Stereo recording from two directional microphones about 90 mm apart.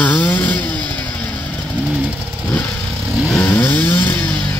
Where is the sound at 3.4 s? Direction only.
20° left (ahead or behind).